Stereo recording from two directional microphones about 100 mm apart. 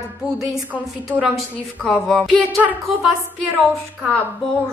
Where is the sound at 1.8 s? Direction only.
5° left (ahead or behind).